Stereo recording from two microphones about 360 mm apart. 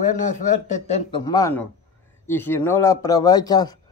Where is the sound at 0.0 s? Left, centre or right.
Left.